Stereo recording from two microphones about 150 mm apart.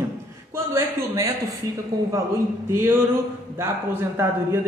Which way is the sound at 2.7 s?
15° right (ahead or behind).